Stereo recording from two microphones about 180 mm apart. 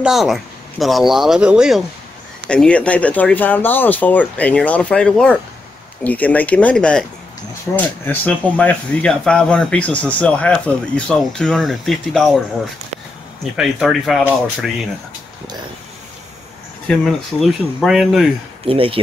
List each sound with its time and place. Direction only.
0.0 s speech: centre (ahead or behind)
13.6 s speech: centre (ahead or behind)
16.8 s speech: centre (ahead or behind)
18.7 s speech: 30° right (ahead or behind)